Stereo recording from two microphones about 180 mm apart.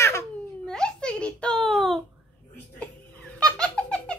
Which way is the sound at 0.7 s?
5° left (ahead or behind).